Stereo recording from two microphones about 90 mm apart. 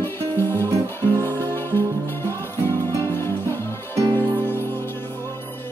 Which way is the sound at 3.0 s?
25° left (ahead or behind).